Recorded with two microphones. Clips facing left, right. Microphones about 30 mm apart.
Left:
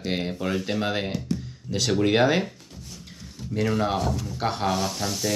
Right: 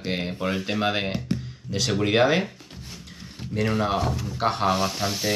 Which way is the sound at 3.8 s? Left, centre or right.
Centre.